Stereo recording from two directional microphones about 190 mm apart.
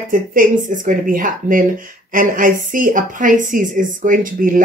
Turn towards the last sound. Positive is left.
turn(degrees=-45)  # may be behind; listen again after turning